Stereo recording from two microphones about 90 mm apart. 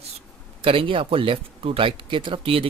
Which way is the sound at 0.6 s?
80° right.